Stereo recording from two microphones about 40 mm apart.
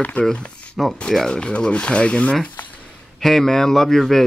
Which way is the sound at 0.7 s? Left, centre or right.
Centre.